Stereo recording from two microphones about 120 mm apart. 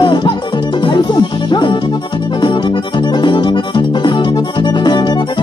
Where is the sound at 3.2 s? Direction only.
40° left (ahead or behind).